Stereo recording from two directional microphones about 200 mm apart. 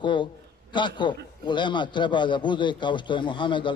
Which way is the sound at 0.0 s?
25° left (ahead or behind).